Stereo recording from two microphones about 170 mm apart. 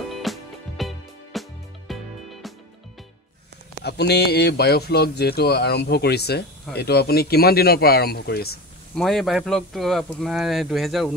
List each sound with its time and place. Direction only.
0.1 s music: centre (ahead or behind)
3.8 s speech: 75° left (ahead or behind)
8.9 s speech: centre (ahead or behind)